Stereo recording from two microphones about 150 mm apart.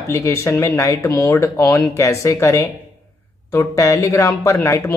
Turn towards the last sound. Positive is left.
turn(degrees=20)  # may be behind; listen again after turning